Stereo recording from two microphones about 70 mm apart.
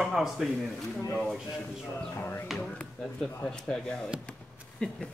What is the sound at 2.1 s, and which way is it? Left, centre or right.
Speech, left.